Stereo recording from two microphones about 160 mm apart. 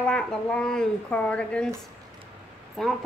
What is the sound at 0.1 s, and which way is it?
A woman's voice, 5° left (ahead or behind).